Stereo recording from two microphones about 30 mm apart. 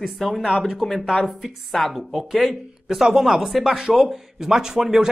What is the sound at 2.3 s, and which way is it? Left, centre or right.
Speech, centre.